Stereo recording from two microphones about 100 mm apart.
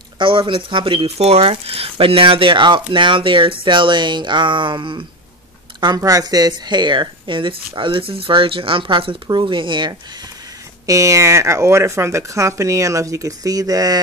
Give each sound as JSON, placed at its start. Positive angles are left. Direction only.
{"t": 0.2, "sound": "speech", "side_deg": -60}
{"t": 1.0, "sound": "speech", "side_deg": -90}
{"t": 5.9, "sound": "speech", "side_deg": -35}
{"t": 10.9, "sound": "speech", "side_deg": -30}